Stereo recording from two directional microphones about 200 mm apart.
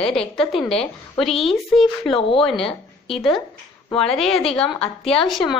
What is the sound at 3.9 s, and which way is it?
A woman's voice, centre (ahead or behind).